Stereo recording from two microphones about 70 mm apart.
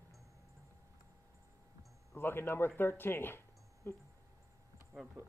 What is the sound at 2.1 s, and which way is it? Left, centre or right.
Speech, left.